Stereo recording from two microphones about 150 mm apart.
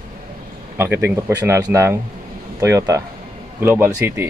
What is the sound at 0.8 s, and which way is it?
Speech, 15° right (ahead or behind).